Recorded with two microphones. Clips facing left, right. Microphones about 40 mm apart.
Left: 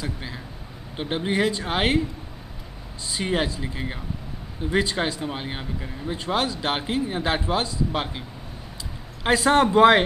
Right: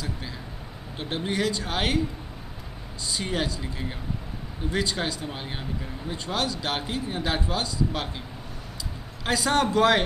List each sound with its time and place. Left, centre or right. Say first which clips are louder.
0.0 s speech: left 2 dB; centre
3.1 s speech: left 4 dB; centre
9.2 s speech: left 5 dB; left